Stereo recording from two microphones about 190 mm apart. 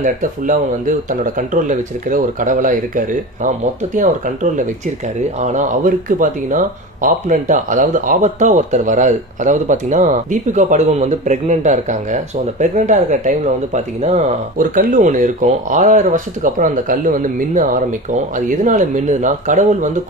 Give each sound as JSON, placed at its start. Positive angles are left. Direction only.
{"t": 0.0, "sound": "speech", "side_deg": -45}